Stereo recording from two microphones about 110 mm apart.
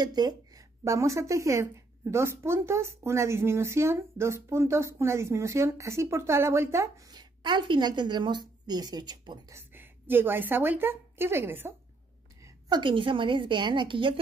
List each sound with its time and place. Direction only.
0.0 s speech: 40° right (ahead or behind)
0.8 s a woman's voice: 25° right (ahead or behind)
7.1 s a woman's voice: 40° right (ahead or behind)
9.5 s a woman's voice: 20° right (ahead or behind)
12.6 s a woman's voice: 45° right (ahead or behind)